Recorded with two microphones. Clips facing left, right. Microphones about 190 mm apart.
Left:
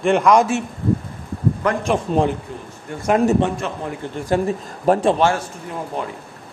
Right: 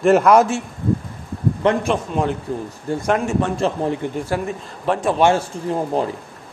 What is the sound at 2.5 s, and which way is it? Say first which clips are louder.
A man's voice: right 8 dB; 40° right (ahead or behind).